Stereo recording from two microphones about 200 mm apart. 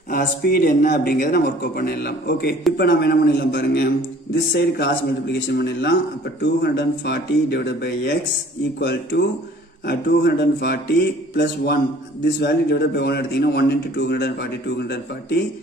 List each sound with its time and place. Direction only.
0.1 s speech: 45° left (ahead or behind)